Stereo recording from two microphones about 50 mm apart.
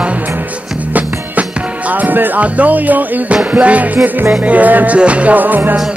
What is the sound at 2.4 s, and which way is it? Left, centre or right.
Speech, right.